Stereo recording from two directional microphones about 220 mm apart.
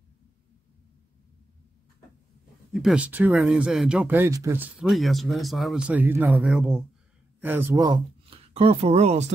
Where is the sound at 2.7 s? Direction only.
5° right (ahead or behind); by 9.3 s 30° right (ahead or behind).